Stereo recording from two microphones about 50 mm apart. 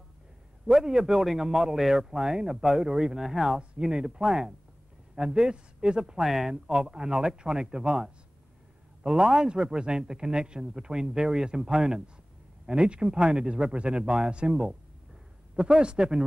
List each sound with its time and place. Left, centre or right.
0.7 s a man's voice: centre
3.5 s a man's voice: centre
6.5 s a man's voice: centre